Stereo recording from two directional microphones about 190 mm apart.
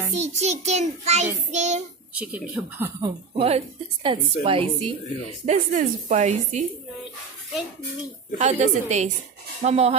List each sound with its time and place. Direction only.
0.1 s a woman's voice: 35° right (ahead or behind)
2.1 s speech: 10° right (ahead or behind)
3.0 s speech: 30° right (ahead or behind)
5.4 s a woman's voice: 40° right (ahead or behind)
8.4 s a woman's voice: 40° right (ahead or behind)